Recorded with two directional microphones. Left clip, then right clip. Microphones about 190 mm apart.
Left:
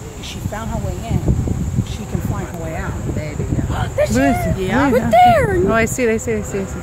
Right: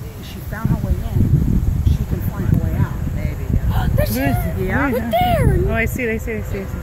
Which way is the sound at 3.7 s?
40° right (ahead or behind).